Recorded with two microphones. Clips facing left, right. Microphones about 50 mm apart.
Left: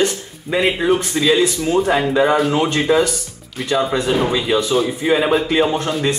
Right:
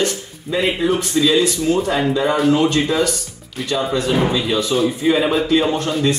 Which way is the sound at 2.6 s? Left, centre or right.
Centre.